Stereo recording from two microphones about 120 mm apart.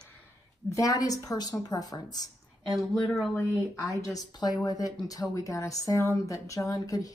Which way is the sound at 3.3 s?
25° left (ahead or behind).